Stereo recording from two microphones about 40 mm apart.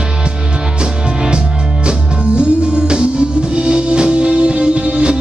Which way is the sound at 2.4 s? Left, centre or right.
Right.